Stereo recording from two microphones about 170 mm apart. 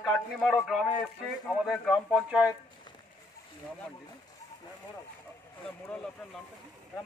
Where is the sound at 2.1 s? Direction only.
5° right (ahead or behind).